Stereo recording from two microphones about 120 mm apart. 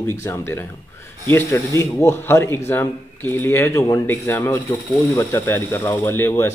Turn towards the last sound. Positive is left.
turn(degrees=20)  # may be behind; listen again after turning